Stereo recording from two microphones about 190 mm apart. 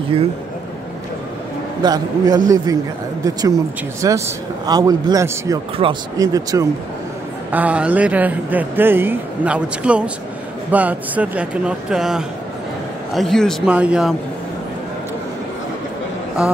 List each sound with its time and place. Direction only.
1.8 s a man's voice: 20° right (ahead or behind)
7.5 s a man's voice: 5° right (ahead or behind)